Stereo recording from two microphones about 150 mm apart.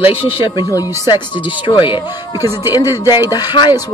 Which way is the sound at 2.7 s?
25° left (ahead or behind).